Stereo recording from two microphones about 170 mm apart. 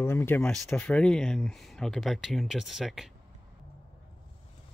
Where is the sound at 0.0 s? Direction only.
15° left (ahead or behind); by 3.1 s centre (ahead or behind).